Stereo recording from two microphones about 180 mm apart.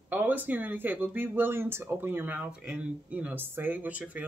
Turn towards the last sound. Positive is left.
turn(degrees=-10)  # may be behind; listen again after turning